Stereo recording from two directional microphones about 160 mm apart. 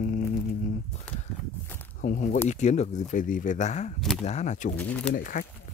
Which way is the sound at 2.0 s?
55° left (ahead or behind).